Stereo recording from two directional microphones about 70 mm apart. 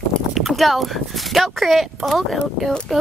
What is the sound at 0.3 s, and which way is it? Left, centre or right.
Speech, centre.